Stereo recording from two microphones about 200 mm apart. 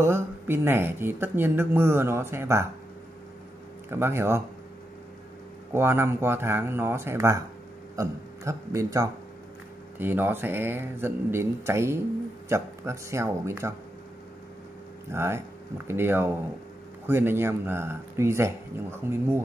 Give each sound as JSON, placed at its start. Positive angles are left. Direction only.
{"t": 0.0, "sound": "speech", "side_deg": -10}
{"t": 3.9, "sound": "speech", "side_deg": -10}
{"t": 5.7, "sound": "speech", "side_deg": -10}
{"t": 15.0, "sound": "speech", "side_deg": -15}